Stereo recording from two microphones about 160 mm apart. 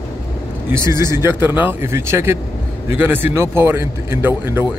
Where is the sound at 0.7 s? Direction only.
15° right (ahead or behind).